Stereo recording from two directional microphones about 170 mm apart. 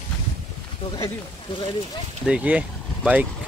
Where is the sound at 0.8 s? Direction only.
35° left (ahead or behind).